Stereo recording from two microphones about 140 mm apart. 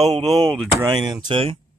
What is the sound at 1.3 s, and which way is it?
Speech, 40° right (ahead or behind).